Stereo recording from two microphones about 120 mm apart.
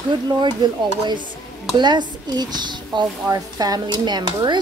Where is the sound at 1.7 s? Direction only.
40° right (ahead or behind).